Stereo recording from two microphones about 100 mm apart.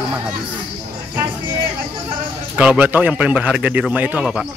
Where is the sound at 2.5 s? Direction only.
15° right (ahead or behind).